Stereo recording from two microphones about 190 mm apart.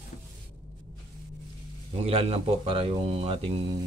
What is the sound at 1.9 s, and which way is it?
Speech, 30° right (ahead or behind).